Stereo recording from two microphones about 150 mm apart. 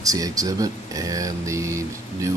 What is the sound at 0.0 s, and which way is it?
Speech, 25° right (ahead or behind).